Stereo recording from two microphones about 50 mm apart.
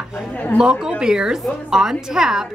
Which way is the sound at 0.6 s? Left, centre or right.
Centre.